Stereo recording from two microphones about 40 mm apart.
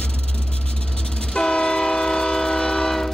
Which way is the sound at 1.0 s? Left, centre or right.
Centre.